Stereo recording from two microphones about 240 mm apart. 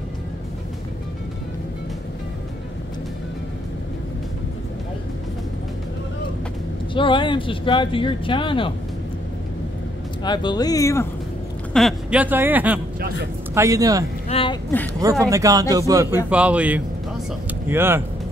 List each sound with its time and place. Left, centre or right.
6.9 s speech: left
10.2 s speech: centre
11.7 s speech: centre
14.3 s speech: left
15.0 s a man's voice: centre